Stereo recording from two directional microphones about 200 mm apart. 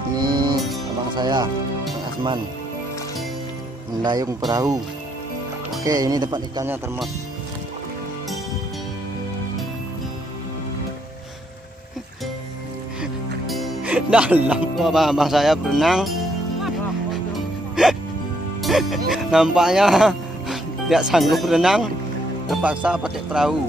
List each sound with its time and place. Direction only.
0.2 s music: 25° right (ahead or behind)
1.1 s speech: 20° right (ahead or behind)
4.0 s speech: 20° right (ahead or behind)
5.9 s speech: 20° right (ahead or behind)
13.0 s speech: centre (ahead or behind)
17.8 s speech: 5° right (ahead or behind)